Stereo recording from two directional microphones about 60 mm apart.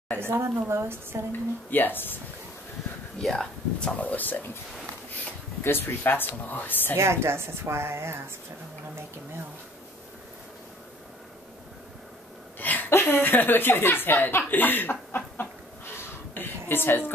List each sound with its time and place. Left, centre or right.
0.2 s a woman's voice: right
1.7 s speech: left
3.2 s speech: centre
4.0 s speech: left
5.6 s speech: left
7.0 s a woman's voice: right
12.5 s a sound: left
13.0 s speech: left